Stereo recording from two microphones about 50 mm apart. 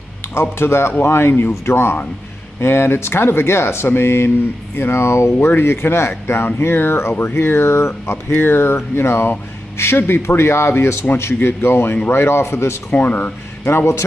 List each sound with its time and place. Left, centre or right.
0.3 s speech: left
5.6 s speech: left
6.6 s speech: left
8.3 s speech: left
12.9 s speech: left
13.2 s speech: left